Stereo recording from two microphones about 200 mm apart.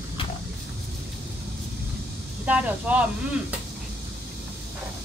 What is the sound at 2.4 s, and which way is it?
Speech, 5° right (ahead or behind).